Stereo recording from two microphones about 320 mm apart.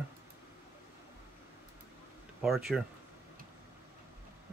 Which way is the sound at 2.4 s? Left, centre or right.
Centre.